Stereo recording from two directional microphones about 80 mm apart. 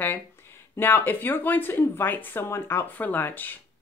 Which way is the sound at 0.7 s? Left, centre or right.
Left.